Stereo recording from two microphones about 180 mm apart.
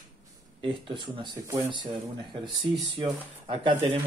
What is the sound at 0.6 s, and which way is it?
Speech, 30° right (ahead or behind).